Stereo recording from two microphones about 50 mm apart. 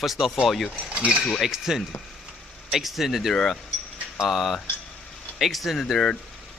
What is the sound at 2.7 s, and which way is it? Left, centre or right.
Speech, centre.